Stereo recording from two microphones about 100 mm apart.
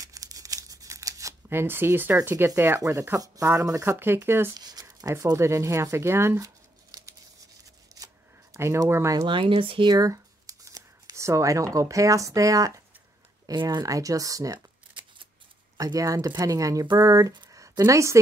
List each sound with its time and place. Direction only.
0.0 s tearing: 35° right (ahead or behind)
2.2 s speech: 25° right (ahead or behind)
4.0 s speech: 25° right (ahead or behind)
4.6 s a sound: 40° right (ahead or behind)
4.8 s speech: 35° right (ahead or behind)
7.9 s a sound: 35° right (ahead or behind)
8.5 s speech: 25° right (ahead or behind)
9.2 s speech: 65° right (ahead or behind)
9.9 s speech: 35° right (ahead or behind)
13.5 s speech: 45° right (ahead or behind)
15.8 s speech: 35° right (ahead or behind)
17.5 s a sound: 35° right (ahead or behind)